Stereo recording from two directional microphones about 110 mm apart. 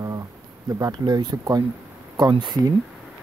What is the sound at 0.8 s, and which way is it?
Speech, 35° right (ahead or behind).